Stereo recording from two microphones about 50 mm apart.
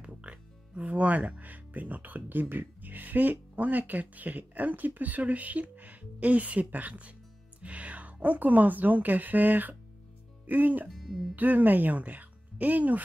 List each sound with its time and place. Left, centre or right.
0.0 s speech: right
10.9 s speech: centre
11.3 s speech: right